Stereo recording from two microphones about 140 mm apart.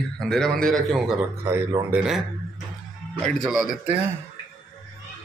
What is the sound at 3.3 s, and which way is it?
Speech, centre (ahead or behind).